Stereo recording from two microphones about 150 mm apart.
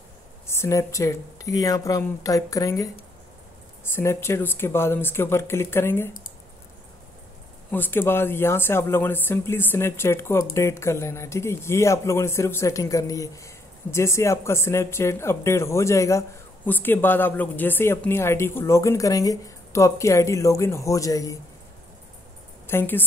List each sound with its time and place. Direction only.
0.5 s speech: 20° left (ahead or behind)
3.9 s speech: 15° left (ahead or behind)
7.7 s speech: 15° left (ahead or behind)
22.7 s speech: 15° left (ahead or behind)